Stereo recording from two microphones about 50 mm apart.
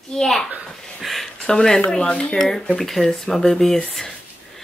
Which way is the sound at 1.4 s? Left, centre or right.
Centre.